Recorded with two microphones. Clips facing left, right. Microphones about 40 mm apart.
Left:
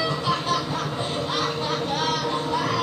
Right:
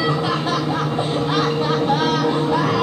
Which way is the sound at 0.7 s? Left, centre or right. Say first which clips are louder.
Right 6 dB; right.